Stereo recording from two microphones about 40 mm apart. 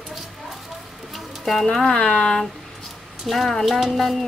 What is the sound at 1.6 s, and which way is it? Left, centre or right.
Speech, centre.